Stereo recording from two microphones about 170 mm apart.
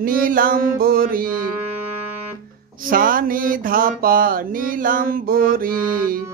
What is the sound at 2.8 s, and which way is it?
Mantra, 55° right (ahead or behind).